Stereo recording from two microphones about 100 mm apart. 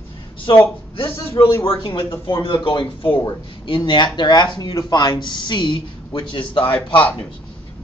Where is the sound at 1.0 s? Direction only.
30° left (ahead or behind).